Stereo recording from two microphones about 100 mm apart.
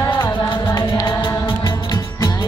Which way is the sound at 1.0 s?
55° left (ahead or behind).